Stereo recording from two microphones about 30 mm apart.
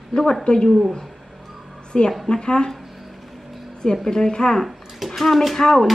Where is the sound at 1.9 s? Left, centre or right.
Left.